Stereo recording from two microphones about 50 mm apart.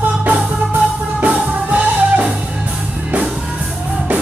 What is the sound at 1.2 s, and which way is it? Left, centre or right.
Music, right.